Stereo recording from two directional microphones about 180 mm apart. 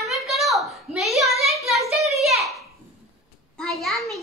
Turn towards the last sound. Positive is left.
turn(degrees=0)  # may be behind; listen again after turning